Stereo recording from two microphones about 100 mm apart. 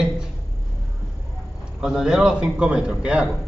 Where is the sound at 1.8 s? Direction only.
5° right (ahead or behind).